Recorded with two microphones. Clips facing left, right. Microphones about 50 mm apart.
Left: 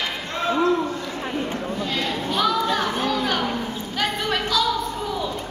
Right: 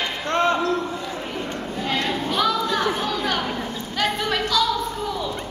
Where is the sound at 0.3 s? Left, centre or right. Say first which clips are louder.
Right 6 dB; right.